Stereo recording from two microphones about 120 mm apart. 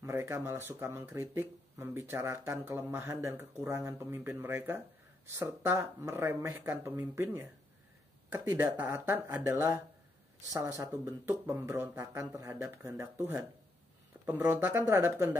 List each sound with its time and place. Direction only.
0.0 s speech: 25° right (ahead or behind)
10.8 s speech: 25° right (ahead or behind)